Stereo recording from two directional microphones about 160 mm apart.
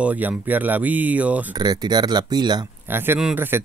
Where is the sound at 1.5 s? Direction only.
25° right (ahead or behind).